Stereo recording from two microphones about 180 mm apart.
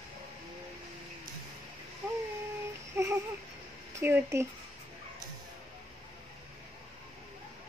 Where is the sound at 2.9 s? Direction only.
15° right (ahead or behind).